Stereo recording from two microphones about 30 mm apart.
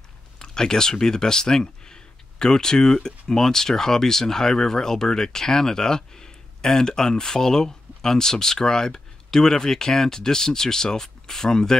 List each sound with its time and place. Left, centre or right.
0.4 s speech: left